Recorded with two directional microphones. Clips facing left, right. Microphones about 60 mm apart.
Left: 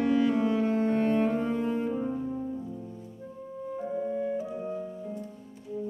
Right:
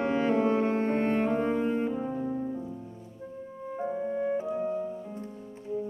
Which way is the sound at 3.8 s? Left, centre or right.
Right.